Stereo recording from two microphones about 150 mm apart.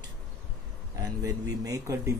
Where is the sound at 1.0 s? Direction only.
25° right (ahead or behind).